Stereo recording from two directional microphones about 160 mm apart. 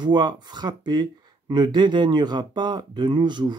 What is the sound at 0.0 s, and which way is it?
Speech, 25° right (ahead or behind).